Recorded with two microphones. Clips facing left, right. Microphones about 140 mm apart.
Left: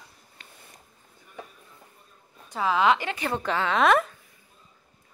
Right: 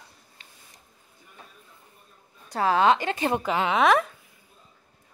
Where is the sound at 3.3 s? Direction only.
15° right (ahead or behind).